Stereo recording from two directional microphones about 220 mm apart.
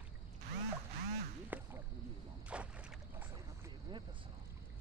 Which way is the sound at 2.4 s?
5° right (ahead or behind).